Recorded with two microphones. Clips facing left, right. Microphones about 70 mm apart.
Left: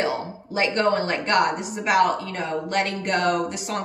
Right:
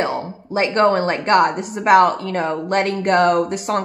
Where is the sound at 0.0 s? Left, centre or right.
Right.